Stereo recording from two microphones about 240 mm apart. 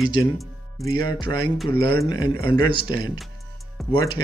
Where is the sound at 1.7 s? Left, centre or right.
Centre.